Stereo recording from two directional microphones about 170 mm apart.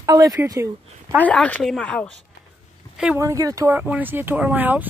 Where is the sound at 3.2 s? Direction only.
20° right (ahead or behind).